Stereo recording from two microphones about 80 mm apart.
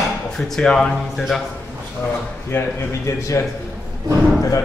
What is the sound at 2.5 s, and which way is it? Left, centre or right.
Speech, left.